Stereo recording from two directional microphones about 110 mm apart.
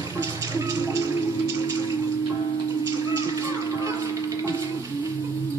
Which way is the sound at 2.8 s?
30° right (ahead or behind).